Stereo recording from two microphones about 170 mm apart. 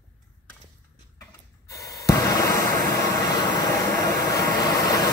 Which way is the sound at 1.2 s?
20° left (ahead or behind).